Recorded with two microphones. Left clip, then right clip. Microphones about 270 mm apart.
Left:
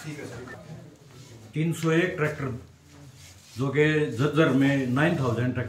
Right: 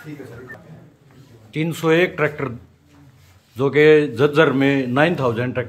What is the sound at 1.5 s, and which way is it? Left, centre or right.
Speech, centre.